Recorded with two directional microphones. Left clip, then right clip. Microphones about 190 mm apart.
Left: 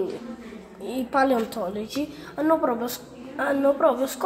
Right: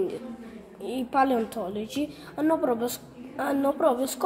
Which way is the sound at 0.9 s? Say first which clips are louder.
Left 2 dB; 10° right (ahead or behind).